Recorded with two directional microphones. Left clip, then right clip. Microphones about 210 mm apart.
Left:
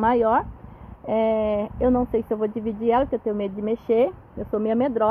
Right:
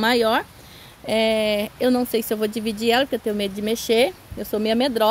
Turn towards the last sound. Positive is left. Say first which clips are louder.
# right 2 dB
turn(degrees=-40)  # may be behind; listen again after turning